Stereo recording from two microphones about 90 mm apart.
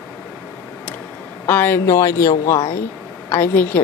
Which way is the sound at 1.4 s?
20° left (ahead or behind).